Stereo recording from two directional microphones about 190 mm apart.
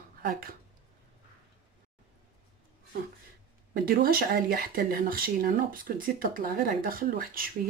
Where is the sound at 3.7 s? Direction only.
50° right (ahead or behind).